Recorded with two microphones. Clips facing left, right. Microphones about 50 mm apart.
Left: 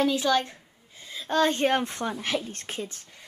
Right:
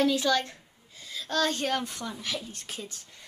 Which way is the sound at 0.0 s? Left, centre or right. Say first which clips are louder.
Left 1 dB; centre.